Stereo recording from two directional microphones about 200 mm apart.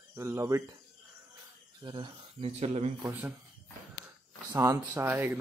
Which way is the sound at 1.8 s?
20° right (ahead or behind).